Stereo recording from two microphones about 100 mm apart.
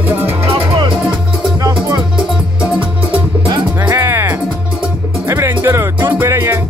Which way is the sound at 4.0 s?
25° right (ahead or behind).